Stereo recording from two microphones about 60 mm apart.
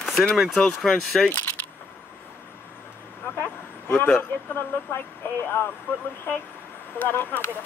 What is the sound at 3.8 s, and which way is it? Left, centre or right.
A man's voice, left.